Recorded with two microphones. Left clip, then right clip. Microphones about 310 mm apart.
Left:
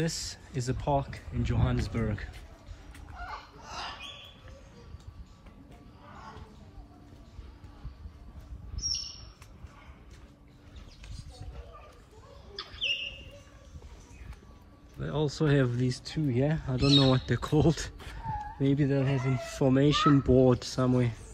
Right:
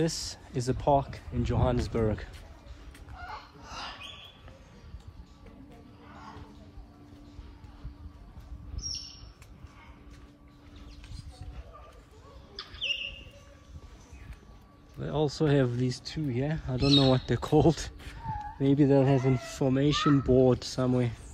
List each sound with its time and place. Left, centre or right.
0.0 s speech: centre
3.3 s a sound: left
12.5 s bird: left
15.0 s speech: centre